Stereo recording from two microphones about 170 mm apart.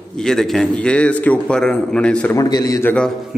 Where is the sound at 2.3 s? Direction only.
20° left (ahead or behind).